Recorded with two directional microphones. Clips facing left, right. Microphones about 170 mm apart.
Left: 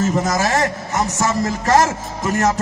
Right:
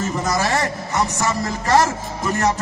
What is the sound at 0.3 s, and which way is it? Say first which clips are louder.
Speech: left 2 dB; 45° left (ahead or behind).